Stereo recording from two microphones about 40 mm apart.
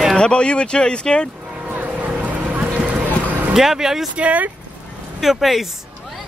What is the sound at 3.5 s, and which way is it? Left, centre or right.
Speech, centre.